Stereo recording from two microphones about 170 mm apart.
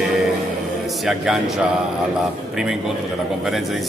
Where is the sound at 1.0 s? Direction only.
5° right (ahead or behind).